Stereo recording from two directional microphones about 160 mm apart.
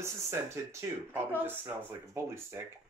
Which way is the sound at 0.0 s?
15° right (ahead or behind).